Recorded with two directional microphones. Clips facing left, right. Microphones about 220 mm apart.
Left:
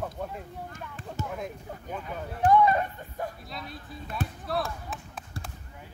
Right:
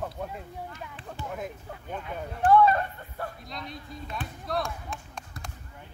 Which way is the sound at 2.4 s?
15° left (ahead or behind).